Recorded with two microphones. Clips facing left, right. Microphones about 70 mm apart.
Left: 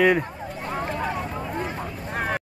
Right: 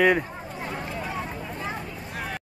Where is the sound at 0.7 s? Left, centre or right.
Left.